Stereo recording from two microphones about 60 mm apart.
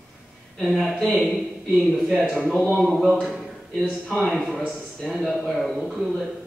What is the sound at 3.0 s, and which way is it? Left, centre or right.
A man's voice, centre.